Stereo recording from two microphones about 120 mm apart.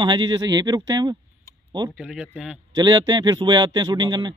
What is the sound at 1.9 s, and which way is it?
Speech, 5° right (ahead or behind).